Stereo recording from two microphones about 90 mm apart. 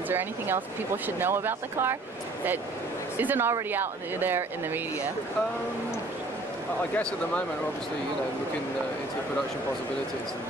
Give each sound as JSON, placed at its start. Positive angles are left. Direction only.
{"t": 0.1, "sound": "speech", "side_deg": -25}
{"t": 3.2, "sound": "speech", "side_deg": -20}
{"t": 7.0, "sound": "speech", "side_deg": 10}